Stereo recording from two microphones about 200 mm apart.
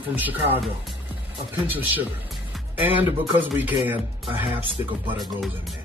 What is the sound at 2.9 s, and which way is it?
Speech, 10° right (ahead or behind).